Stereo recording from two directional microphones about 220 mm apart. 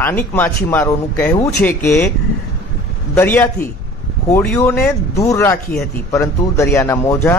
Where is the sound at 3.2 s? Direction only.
10° left (ahead or behind).